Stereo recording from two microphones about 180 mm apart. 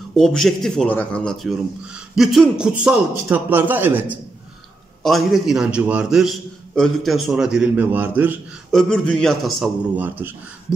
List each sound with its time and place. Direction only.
0.1 s a man's voice: 5° left (ahead or behind)
8.7 s a man's voice: 5° left (ahead or behind)
9.9 s a man's voice: 10° right (ahead or behind)